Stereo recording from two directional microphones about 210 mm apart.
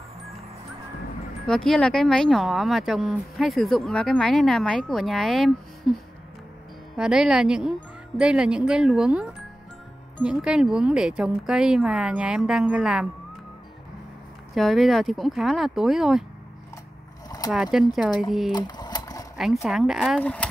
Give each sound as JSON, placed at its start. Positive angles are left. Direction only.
{"t": 1.5, "sound": "speech", "side_deg": 5}
{"t": 7.0, "sound": "speech", "side_deg": -5}
{"t": 14.5, "sound": "speech", "side_deg": 0}
{"t": 17.5, "sound": "speech", "side_deg": 0}
{"t": 18.5, "sound": "a sound", "side_deg": 20}
{"t": 19.3, "sound": "speech", "side_deg": 0}